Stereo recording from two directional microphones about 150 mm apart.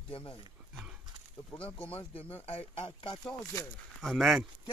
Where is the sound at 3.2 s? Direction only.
20° left (ahead or behind).